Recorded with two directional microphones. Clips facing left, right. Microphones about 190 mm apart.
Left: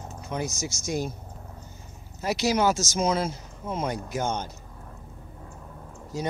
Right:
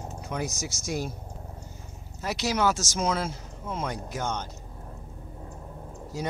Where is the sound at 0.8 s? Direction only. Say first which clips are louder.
Left 2 dB; 5° right (ahead or behind).